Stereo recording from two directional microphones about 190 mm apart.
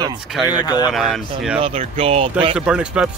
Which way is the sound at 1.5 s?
30° right (ahead or behind).